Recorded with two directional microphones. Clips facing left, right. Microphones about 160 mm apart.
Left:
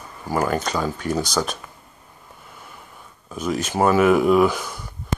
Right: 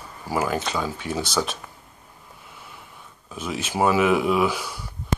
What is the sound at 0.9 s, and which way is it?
Speech, 40° left (ahead or behind).